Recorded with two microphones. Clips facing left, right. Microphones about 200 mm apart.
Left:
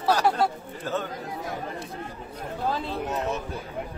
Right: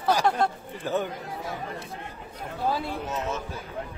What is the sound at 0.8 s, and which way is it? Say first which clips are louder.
Speech: right 2 dB; 15° right (ahead or behind).